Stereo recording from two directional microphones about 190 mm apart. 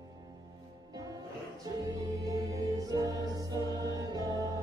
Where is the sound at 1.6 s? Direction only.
20° right (ahead or behind).